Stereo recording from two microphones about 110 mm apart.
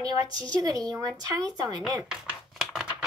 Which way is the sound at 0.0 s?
35° right (ahead or behind).